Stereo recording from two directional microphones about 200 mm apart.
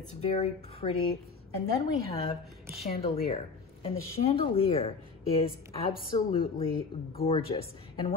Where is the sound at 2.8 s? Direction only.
30° left (ahead or behind).